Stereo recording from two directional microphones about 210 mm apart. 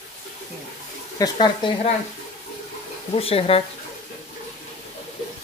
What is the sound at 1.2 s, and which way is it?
Speech, 20° left (ahead or behind).